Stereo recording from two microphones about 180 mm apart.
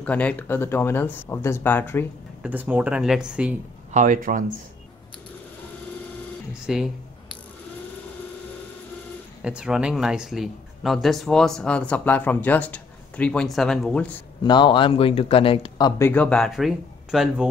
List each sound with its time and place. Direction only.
0.0 s speech: 10° left (ahead or behind)
2.4 s speech: 10° right (ahead or behind)
3.9 s speech: 50° right (ahead or behind)
6.6 s speech: 5° right (ahead or behind)
9.4 s speech: 5° right (ahead or behind)
14.4 s speech: 25° left (ahead or behind)
16.0 s speech: 10° left (ahead or behind)